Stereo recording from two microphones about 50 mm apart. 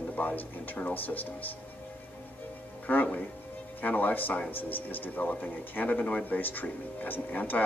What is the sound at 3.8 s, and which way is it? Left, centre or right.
Speech, left.